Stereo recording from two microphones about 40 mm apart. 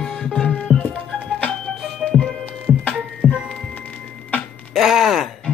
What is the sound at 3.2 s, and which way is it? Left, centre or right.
Music, centre.